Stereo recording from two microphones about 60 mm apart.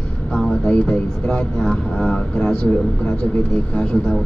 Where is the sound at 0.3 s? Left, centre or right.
Centre.